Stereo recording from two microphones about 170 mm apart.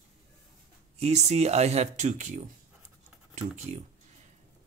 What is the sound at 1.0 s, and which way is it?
Speech, 40° right (ahead or behind).